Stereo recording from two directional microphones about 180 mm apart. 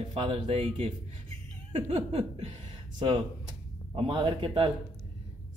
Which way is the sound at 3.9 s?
25° right (ahead or behind).